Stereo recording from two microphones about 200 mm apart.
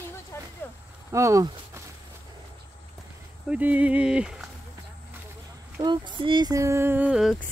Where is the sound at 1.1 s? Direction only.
15° right (ahead or behind).